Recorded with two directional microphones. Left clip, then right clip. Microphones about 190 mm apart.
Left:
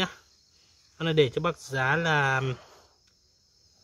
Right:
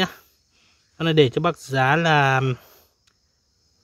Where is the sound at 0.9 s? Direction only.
50° right (ahead or behind).